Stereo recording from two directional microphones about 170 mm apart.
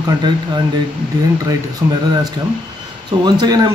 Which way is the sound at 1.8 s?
15° right (ahead or behind).